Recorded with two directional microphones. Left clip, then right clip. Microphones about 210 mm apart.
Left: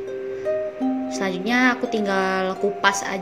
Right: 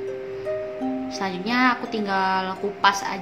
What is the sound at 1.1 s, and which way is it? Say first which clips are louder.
Speech: left 2 dB; 15° left (ahead or behind).